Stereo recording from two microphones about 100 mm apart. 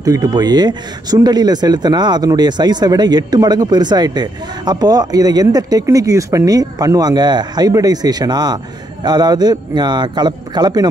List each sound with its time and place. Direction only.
0.0 s a man's voice: 40° right (ahead or behind)